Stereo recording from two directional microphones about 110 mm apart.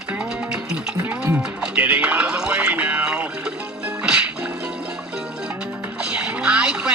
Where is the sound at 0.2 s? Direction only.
10° right (ahead or behind).